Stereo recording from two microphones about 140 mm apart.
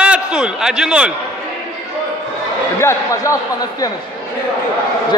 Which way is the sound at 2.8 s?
20° left (ahead or behind).